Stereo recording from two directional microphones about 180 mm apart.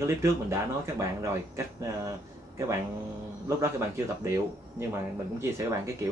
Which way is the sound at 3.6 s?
15° right (ahead or behind).